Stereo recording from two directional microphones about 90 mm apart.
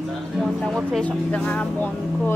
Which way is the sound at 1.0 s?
15° left (ahead or behind).